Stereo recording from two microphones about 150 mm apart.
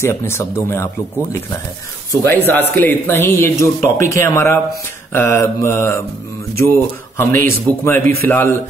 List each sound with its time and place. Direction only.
0.0 s a man's voice: 15° left (ahead or behind)
2.2 s a man's voice: 15° left (ahead or behind)
5.1 s mantra: 20° left (ahead or behind)
6.6 s a man's voice: 15° left (ahead or behind)